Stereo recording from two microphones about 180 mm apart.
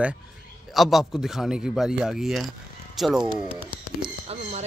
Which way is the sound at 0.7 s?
Centre (ahead or behind).